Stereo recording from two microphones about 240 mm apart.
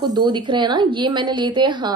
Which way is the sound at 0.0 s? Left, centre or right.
Centre.